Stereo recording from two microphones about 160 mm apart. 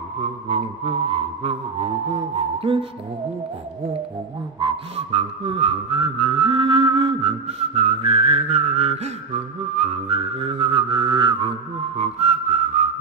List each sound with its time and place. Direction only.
0.2 s whistling: 40° right (ahead or behind)
4.6 s whistling: 30° right (ahead or behind)
12.0 s whistling: 40° right (ahead or behind)